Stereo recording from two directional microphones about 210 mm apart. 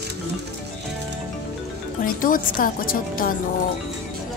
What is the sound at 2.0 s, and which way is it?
Speech, 40° left (ahead or behind).